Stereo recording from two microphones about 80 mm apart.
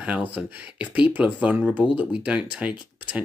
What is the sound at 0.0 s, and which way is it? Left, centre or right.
Speech, centre.